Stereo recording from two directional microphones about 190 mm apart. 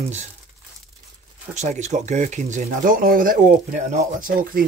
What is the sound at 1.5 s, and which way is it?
Speech, 35° right (ahead or behind).